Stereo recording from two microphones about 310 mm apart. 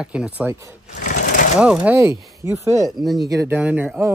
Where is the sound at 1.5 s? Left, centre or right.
Centre.